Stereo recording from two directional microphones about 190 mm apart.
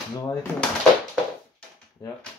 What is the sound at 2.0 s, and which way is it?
Speech, 20° left (ahead or behind).